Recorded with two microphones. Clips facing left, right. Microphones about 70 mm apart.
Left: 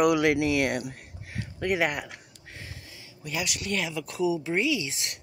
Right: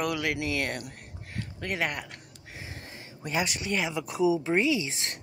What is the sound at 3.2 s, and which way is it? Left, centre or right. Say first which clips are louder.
Speech: right 3 dB; right.